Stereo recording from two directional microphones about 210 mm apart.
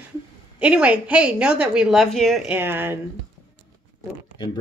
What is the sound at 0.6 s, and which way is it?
A woman's voice, 5° right (ahead or behind).